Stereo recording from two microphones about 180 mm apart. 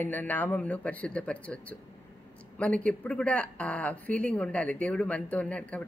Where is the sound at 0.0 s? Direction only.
10° left (ahead or behind).